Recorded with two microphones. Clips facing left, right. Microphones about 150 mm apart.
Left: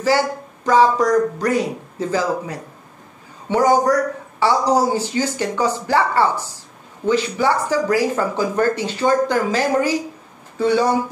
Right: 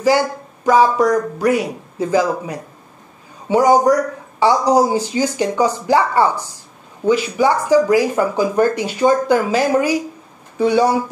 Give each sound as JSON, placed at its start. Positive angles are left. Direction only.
{"t": 0.7, "sound": "speech", "side_deg": -10}